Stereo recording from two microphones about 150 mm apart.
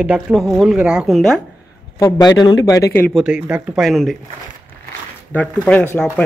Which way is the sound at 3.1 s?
5° right (ahead or behind).